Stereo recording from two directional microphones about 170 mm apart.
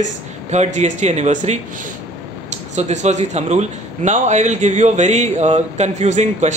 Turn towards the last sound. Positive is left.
turn(degrees=-45)  # may be behind; listen again after turning